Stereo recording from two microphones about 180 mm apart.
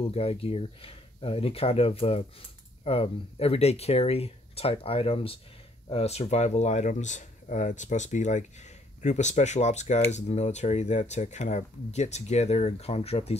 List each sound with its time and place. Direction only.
0.0 s speech: 35° left (ahead or behind)